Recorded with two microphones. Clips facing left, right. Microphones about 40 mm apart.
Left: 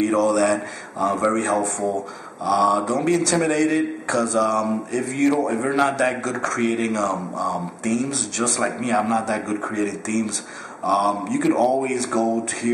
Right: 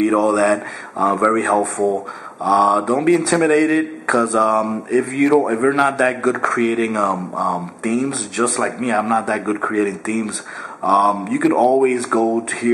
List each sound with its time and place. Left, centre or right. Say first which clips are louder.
0.0 s speech: right 3 dB; centre